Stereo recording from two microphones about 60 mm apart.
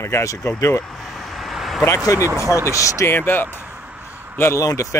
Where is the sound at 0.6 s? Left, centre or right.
Left.